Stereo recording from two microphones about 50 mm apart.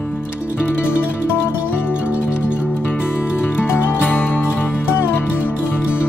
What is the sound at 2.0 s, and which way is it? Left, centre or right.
Music, right.